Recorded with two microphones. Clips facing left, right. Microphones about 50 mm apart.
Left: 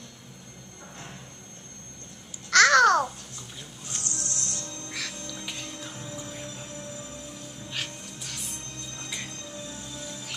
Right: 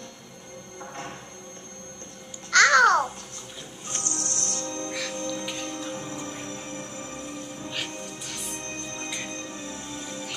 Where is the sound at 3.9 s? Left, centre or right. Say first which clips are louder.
Right 4 dB; right.